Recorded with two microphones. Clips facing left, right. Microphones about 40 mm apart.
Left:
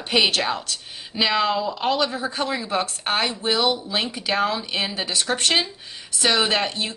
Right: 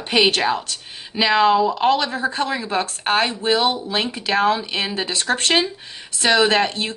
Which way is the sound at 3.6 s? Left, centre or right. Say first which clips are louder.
Right 2 dB; right.